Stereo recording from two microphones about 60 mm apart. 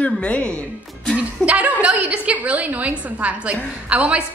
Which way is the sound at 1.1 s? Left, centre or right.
Right.